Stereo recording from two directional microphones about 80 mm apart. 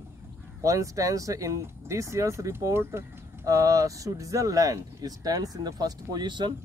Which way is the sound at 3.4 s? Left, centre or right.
Right.